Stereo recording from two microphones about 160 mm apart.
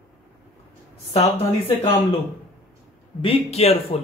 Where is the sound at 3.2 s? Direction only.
35° left (ahead or behind).